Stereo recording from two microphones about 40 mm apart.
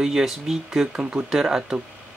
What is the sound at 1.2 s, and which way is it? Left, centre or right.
Speech, centre.